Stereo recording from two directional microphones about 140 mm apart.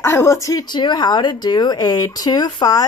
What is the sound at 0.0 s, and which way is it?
Speech, 20° left (ahead or behind).